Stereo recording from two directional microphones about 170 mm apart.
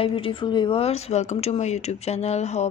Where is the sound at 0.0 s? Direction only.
30° left (ahead or behind).